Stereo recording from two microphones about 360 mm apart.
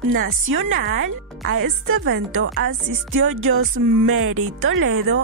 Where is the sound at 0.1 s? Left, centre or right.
Right.